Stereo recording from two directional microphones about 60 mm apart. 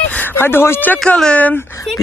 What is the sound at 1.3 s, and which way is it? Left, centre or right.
Speech, left.